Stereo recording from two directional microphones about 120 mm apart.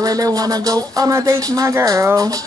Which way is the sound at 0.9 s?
25° right (ahead or behind).